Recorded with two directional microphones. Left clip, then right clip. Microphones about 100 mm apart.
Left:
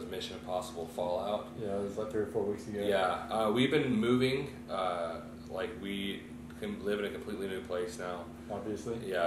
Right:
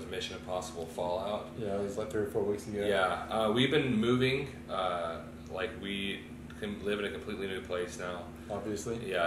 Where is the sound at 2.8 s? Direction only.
15° left (ahead or behind).